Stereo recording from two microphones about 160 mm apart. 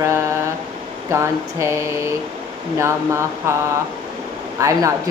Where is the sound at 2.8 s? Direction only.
15° right (ahead or behind).